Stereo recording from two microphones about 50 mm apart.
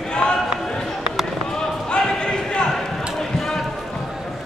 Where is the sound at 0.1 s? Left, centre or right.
Centre.